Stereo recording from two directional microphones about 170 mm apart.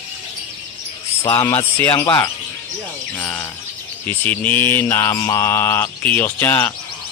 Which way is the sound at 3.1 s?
15° left (ahead or behind).